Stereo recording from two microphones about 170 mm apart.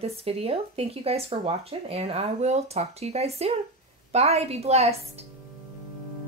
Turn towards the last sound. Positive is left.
turn(degrees=-40)  # may be behind; listen again after turning